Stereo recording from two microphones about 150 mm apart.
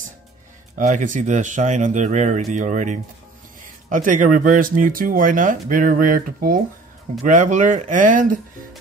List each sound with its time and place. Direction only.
0.7 s speech: 55° right (ahead or behind)
7.2 s speech: 55° right (ahead or behind)